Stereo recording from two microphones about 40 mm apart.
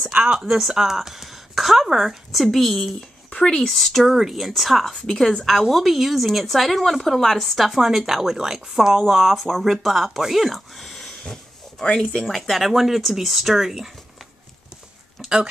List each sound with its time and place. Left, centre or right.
0.1 s speech: right
0.5 s a woman's voice: centre
2.3 s a woman's voice: centre
3.3 s speech: left
3.6 s a woman's voice: centre
4.9 s a woman's voice: centre
11.8 s speech: left
12.2 s a woman's voice: centre
15.2 s a sound: centre